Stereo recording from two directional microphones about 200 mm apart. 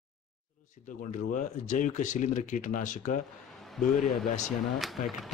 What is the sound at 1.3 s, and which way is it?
Speech, 40° left (ahead or behind).